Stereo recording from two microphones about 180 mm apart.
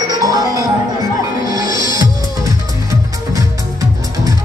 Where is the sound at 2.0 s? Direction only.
20° right (ahead or behind).